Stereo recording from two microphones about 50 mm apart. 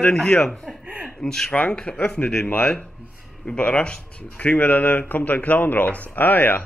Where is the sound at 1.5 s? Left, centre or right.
Centre.